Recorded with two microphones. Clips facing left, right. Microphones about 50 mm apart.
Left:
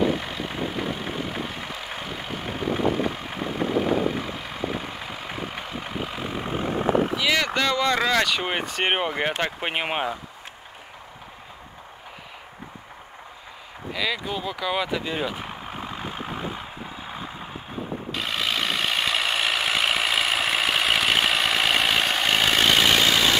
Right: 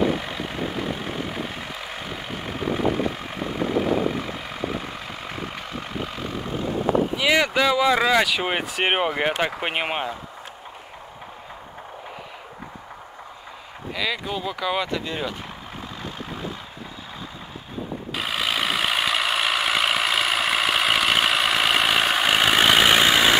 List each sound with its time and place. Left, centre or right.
0.0 s vehicle: centre
7.2 s speech: centre
13.9 s speech: centre
15.8 s vehicle: left
18.1 s vehicle: centre